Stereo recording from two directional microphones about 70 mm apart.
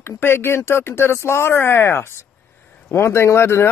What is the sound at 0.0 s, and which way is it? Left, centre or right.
A man's voice, left.